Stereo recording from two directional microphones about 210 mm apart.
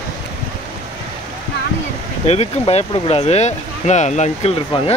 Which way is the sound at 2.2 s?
30° left (ahead or behind).